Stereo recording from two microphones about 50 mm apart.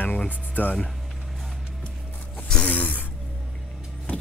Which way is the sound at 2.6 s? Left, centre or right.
Left.